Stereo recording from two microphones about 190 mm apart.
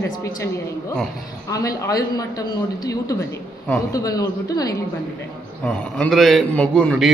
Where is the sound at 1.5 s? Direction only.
20° left (ahead or behind).